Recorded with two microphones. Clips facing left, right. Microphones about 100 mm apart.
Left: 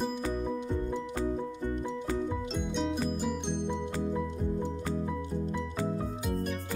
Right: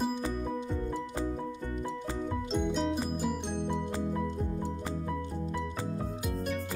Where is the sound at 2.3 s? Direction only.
Centre (ahead or behind).